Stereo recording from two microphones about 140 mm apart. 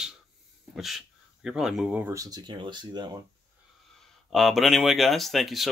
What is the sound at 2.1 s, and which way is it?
Speech, 25° right (ahead or behind).